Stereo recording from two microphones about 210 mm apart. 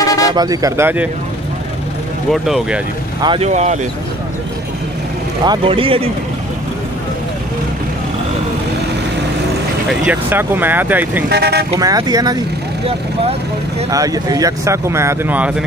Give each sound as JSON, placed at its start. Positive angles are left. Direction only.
{"t": 0.0, "sound": "a sound", "side_deg": 15}
{"t": 0.3, "sound": "speech", "side_deg": -20}
{"t": 2.3, "sound": "speech", "side_deg": 0}
{"t": 3.2, "sound": "speech", "side_deg": -25}
{"t": 5.4, "sound": "speech", "side_deg": -25}
{"t": 10.0, "sound": "speech", "side_deg": -10}
{"t": 11.2, "sound": "speech", "side_deg": -50}
{"t": 11.7, "sound": "speech", "side_deg": -15}
{"t": 13.8, "sound": "speech", "side_deg": -15}